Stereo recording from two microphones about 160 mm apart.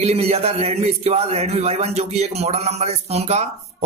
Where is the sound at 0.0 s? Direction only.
40° right (ahead or behind).